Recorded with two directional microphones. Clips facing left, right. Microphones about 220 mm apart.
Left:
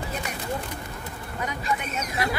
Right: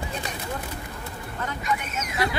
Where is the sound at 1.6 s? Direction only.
30° left (ahead or behind).